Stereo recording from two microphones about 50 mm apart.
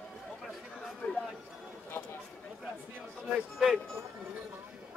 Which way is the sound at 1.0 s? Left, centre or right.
Left.